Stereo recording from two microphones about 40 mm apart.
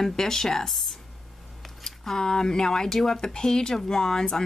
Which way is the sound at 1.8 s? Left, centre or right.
Centre.